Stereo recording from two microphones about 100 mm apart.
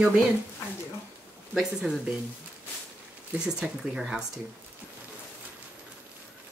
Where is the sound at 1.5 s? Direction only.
10° right (ahead or behind).